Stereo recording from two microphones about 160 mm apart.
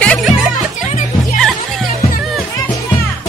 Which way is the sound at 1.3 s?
Centre (ahead or behind).